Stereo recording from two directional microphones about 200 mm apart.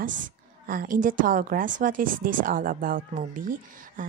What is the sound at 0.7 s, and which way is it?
A woman's voice, 45° right (ahead or behind).